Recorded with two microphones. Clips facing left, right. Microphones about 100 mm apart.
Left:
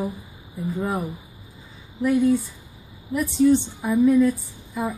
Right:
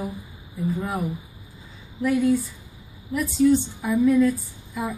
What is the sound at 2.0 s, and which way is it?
A woman's voice, 20° left (ahead or behind).